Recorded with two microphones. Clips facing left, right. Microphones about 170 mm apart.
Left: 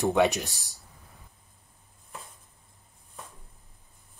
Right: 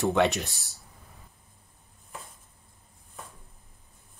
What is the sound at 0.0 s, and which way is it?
Speech, 15° left (ahead or behind).